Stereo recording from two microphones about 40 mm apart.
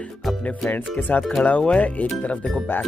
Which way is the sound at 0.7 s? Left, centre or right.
Left.